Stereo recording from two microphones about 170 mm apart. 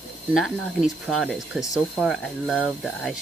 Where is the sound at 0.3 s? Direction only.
5° right (ahead or behind).